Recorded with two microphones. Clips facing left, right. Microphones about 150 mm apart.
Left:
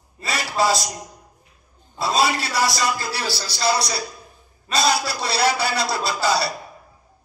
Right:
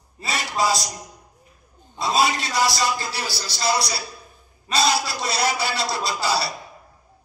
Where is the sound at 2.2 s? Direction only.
20° right (ahead or behind).